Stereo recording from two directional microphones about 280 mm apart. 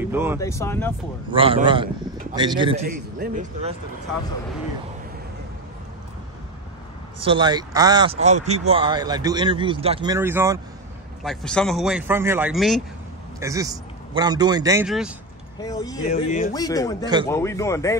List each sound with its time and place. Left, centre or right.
0.0 s speech: centre
0.4 s speech: centre
1.3 s speech: centre
2.8 s speech: right
7.2 s speech: centre
11.2 s speech: centre
13.4 s a man's voice: centre
14.9 s speech: centre
15.6 s speech: centre
16.1 s speech: left
16.5 s speech: centre
17.0 s speech: centre
17.3 s speech: centre